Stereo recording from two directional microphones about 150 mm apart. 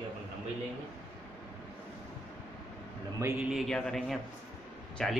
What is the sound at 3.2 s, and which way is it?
A man's voice, 5° right (ahead or behind).